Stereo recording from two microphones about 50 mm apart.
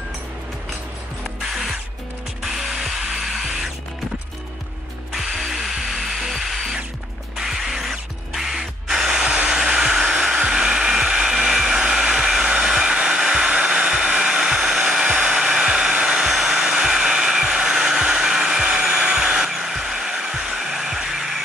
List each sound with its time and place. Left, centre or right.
2.4 s ratchet: centre
5.1 s drill: centre
7.3 s tools: centre
15.0 s music: centre
15.7 s hair dryer: centre